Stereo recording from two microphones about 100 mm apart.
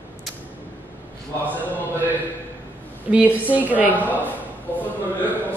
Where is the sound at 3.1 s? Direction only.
15° right (ahead or behind).